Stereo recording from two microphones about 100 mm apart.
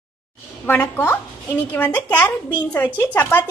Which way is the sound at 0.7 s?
20° left (ahead or behind).